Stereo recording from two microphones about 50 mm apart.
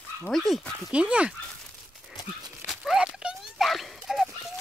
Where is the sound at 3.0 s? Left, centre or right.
Centre.